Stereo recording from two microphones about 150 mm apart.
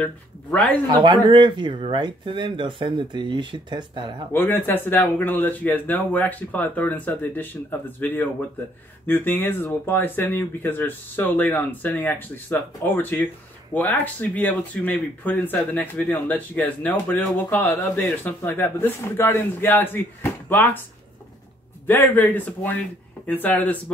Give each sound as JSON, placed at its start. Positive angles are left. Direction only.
{"t": 0.0, "sound": "speech", "side_deg": 10}
{"t": 0.8, "sound": "speech", "side_deg": -30}
{"t": 4.3, "sound": "speech", "side_deg": 15}
{"t": 21.8, "sound": "speech", "side_deg": 15}